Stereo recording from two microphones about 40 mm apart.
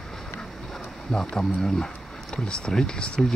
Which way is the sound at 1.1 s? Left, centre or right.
Centre.